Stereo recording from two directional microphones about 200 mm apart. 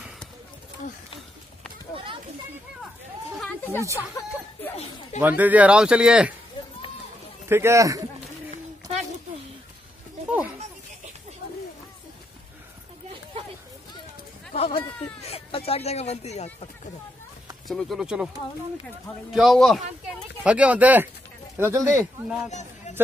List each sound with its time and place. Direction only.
3.3 s speech: 5° left (ahead or behind)
5.2 s a man's voice: 10° right (ahead or behind)
7.4 s a man's voice: 10° right (ahead or behind)
14.5 s speech: 30° left (ahead or behind)
17.6 s speech: centre (ahead or behind)
19.3 s a man's voice: centre (ahead or behind)
22.5 s a sound: 35° left (ahead or behind)